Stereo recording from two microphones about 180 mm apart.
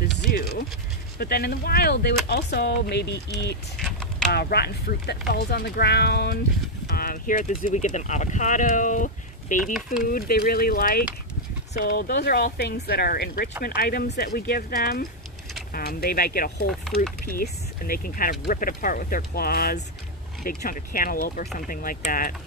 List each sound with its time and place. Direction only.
0.2 s a sound: 55° left (ahead or behind)
1.1 s speech: 60° left (ahead or behind)
3.7 s typing: 5° left (ahead or behind)
4.3 s speech: 65° left (ahead or behind)
6.9 s speech: 55° left (ahead or behind)